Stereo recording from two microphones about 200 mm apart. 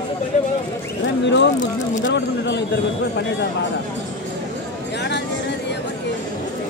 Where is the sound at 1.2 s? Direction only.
60° left (ahead or behind).